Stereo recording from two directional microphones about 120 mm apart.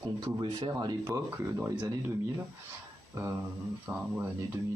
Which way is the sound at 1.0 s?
20° right (ahead or behind).